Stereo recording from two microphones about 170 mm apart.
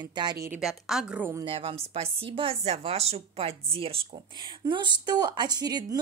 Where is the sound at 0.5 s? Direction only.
5° right (ahead or behind).